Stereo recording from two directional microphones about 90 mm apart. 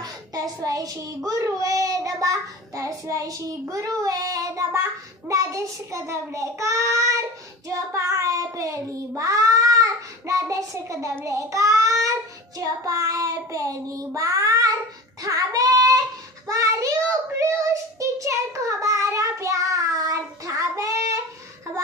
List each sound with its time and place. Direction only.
0.0 s child singing: 40° right (ahead or behind)